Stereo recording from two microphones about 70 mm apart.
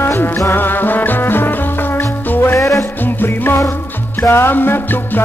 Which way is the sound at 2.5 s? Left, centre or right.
Left.